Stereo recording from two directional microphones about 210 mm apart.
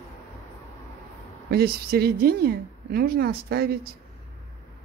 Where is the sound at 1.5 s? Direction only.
45° right (ahead or behind).